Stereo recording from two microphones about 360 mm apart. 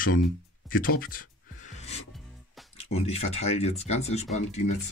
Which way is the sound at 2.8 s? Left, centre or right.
Centre.